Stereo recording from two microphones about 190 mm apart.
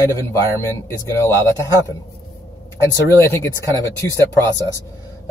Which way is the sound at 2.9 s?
15° left (ahead or behind).